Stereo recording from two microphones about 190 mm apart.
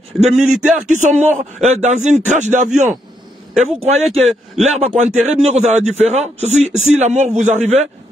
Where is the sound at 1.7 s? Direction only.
35° right (ahead or behind).